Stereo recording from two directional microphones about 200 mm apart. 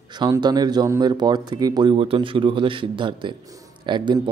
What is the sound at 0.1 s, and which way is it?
Speech, 20° right (ahead or behind).